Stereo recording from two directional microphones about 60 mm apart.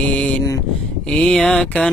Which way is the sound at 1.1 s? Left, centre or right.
Centre.